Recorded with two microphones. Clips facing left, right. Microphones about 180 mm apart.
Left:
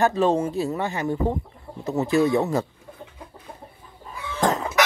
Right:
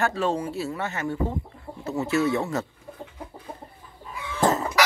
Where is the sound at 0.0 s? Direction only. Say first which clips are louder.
Left 5 dB; 20° left (ahead or behind).